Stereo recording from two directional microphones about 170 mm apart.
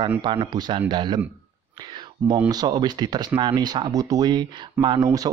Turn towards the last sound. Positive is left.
turn(degrees=-20)  # may be behind; listen again after turning